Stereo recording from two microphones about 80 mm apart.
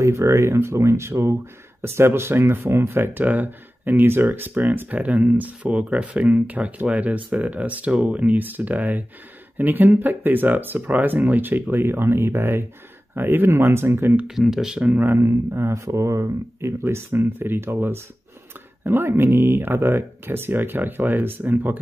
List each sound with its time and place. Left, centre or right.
0.0 s speech: right
14.3 s speech: centre
14.8 s speech: right